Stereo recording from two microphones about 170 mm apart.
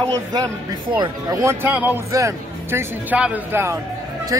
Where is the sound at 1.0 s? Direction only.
20° right (ahead or behind).